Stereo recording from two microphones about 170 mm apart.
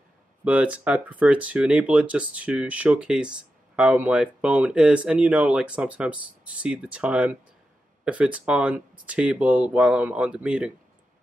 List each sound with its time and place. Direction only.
0.4 s speech: 10° right (ahead or behind)